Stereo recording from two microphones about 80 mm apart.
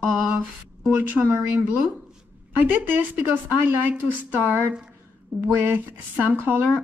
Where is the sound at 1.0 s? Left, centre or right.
Right.